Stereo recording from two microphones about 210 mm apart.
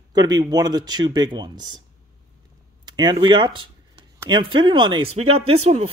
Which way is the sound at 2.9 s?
20° right (ahead or behind).